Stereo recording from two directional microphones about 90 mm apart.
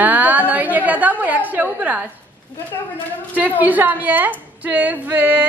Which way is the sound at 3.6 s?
20° right (ahead or behind).